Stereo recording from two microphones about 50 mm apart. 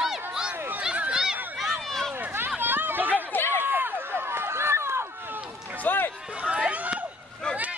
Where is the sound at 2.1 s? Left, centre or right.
Right.